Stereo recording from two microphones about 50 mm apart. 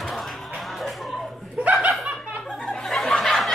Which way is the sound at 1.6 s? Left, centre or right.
Right.